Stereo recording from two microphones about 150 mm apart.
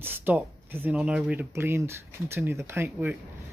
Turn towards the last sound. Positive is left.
turn(degrees=-15)  # may be behind; listen again after turning